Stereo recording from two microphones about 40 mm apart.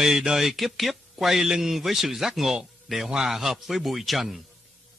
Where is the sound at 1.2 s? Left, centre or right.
Centre.